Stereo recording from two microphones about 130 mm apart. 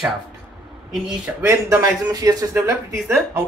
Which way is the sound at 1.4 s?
20° right (ahead or behind).